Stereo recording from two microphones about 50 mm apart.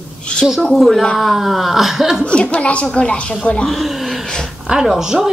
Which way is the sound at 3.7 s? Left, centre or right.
Centre.